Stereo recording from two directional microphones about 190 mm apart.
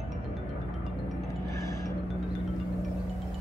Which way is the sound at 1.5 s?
15° left (ahead or behind).